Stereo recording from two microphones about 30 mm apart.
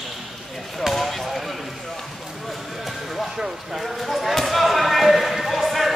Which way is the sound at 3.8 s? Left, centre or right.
Centre.